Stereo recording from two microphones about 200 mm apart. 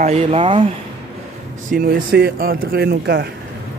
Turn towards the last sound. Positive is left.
turn(degrees=-55)  # may be behind; listen again after turning